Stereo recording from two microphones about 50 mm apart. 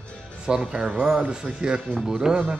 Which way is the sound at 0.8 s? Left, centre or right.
Right.